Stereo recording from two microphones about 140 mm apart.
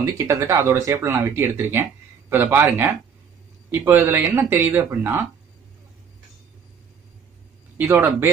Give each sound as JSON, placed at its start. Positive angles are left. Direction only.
{"t": 0.0, "sound": "speech", "side_deg": -20}
{"t": 7.7, "sound": "a man's voice", "side_deg": -15}